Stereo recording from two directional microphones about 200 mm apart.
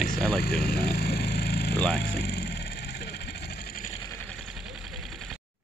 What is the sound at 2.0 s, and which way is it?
Speech, 55° left (ahead or behind).